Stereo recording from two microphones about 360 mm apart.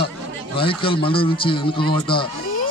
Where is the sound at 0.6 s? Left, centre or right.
Centre.